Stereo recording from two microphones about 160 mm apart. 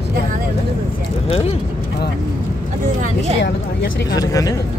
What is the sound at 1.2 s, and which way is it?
Speech, 35° left (ahead or behind).